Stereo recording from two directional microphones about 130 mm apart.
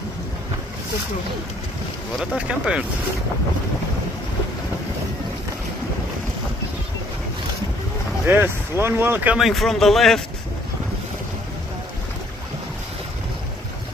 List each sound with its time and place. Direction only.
2.1 s speech: 10° right (ahead or behind)
8.3 s speech: 15° right (ahead or behind)
9.4 s a man's voice: centre (ahead or behind)